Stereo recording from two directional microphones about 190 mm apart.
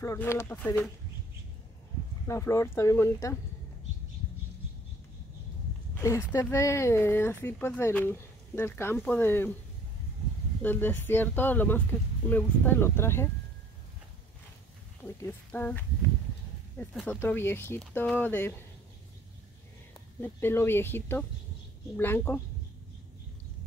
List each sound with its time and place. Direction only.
0.0 s speech: 15° left (ahead or behind)
2.2 s speech: 15° left (ahead or behind)
5.9 s speech: 15° left (ahead or behind)
10.6 s speech: 10° left (ahead or behind)
15.2 s speech: 10° left (ahead or behind)
20.2 s speech: 10° left (ahead or behind)